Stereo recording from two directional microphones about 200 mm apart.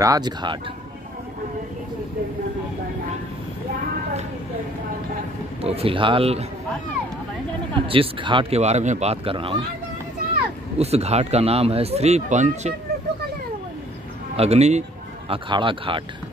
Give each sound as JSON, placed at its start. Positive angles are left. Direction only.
{"t": 0.0, "sound": "speech", "side_deg": -20}
{"t": 5.6, "sound": "speech", "side_deg": -30}
{"t": 7.9, "sound": "speech", "side_deg": -25}
{"t": 10.8, "sound": "speech", "side_deg": -30}
{"t": 14.3, "sound": "speech", "side_deg": -30}